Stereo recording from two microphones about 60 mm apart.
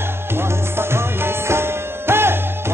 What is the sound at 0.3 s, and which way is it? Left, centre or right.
Music, right.